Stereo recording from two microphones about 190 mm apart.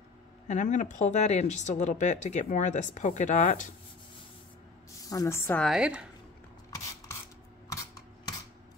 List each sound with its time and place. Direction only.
0.5 s speech: 40° left (ahead or behind)
5.1 s a woman's voice: 15° left (ahead or behind)
5.7 s speech: 5° right (ahead or behind)
7.7 s camera: 20° left (ahead or behind)